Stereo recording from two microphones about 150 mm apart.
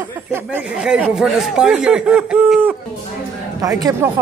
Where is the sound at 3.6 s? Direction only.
20° right (ahead or behind).